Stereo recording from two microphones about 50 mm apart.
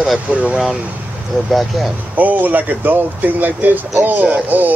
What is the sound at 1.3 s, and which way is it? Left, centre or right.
Speech, centre.